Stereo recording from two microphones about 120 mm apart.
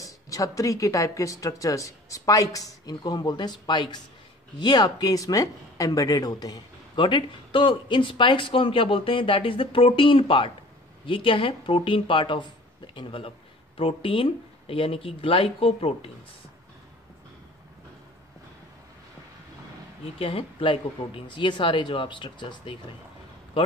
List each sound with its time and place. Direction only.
0.0 s speech: 25° left (ahead or behind); by 16.1 s 50° left (ahead or behind)
20.2 s speech: 50° left (ahead or behind)